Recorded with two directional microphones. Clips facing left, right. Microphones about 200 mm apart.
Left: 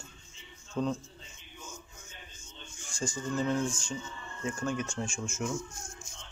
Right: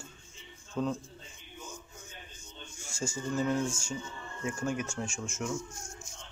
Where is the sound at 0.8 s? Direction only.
Centre (ahead or behind).